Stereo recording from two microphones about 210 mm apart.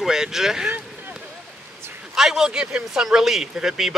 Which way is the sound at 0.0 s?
Centre (ahead or behind).